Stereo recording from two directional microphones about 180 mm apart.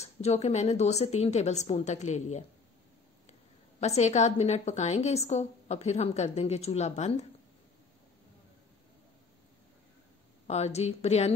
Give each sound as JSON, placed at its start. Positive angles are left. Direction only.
{"t": 0.0, "sound": "a woman's voice", "side_deg": 35}
{"t": 3.8, "sound": "a woman's voice", "side_deg": 40}
{"t": 10.4, "sound": "a woman's voice", "side_deg": 35}